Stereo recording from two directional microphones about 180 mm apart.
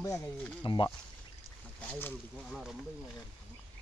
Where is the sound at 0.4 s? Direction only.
5° left (ahead or behind).